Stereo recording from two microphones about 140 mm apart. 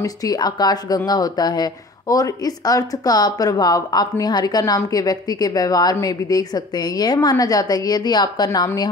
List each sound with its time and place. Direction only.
0.0 s speech: 25° left (ahead or behind)